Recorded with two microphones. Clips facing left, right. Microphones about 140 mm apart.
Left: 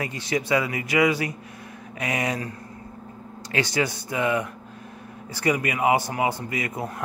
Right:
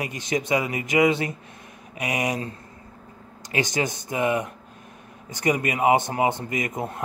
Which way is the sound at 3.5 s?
20° right (ahead or behind).